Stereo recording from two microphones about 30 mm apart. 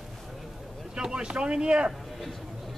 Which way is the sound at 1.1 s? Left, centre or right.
Right.